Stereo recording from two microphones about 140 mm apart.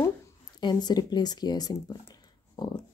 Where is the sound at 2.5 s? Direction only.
30° left (ahead or behind).